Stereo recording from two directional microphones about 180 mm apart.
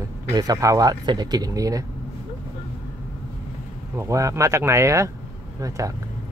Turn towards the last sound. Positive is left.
turn(degrees=-15)  # may be behind; listen again after turning